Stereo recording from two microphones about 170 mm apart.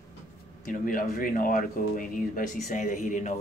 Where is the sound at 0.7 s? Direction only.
55° left (ahead or behind).